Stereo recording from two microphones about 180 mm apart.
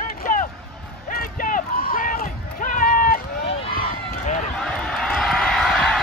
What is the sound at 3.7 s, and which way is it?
Run, 55° left (ahead or behind).